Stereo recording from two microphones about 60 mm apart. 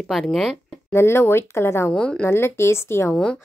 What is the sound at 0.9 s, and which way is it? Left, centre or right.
A woman's voice, left.